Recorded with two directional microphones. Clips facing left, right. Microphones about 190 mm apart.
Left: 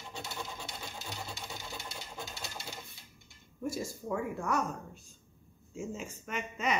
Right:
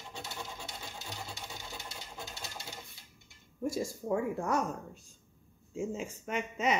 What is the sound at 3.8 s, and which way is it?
Speech, 30° right (ahead or behind).